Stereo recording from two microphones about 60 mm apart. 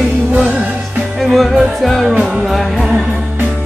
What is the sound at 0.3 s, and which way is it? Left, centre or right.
Music, right.